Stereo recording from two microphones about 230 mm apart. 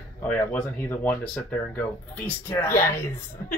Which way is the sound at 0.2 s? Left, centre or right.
Centre.